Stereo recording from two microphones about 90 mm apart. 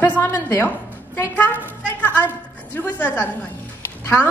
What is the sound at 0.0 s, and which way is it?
Speech, 25° left (ahead or behind).